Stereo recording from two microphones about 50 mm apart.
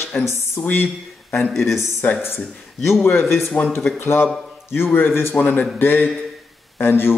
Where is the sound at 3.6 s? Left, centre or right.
Left.